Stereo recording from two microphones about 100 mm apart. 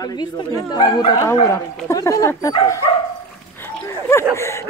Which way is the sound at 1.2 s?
30° left (ahead or behind).